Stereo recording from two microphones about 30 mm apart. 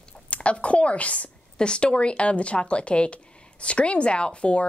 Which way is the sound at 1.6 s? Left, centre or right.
Left.